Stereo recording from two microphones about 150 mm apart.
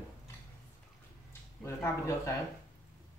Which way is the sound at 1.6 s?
20° left (ahead or behind).